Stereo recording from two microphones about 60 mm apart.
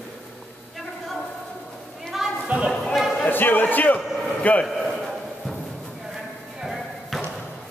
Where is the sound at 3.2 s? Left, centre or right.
Left.